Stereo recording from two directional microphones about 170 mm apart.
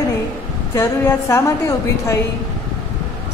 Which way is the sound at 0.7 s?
15° left (ahead or behind).